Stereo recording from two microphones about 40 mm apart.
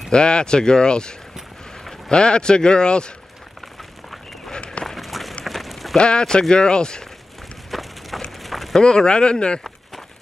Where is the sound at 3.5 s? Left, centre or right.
Centre.